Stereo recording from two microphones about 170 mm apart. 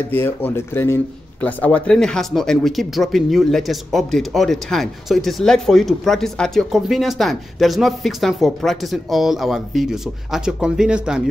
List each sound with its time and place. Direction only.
0.1 s speech: 10° left (ahead or behind); by 11.2 s 5° right (ahead or behind)